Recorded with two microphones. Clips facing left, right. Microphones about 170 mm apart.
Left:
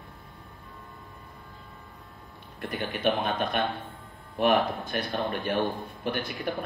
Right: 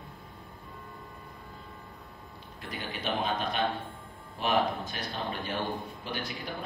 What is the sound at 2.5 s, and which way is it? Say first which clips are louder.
A man's voice: left 6 dB; 55° left (ahead or behind).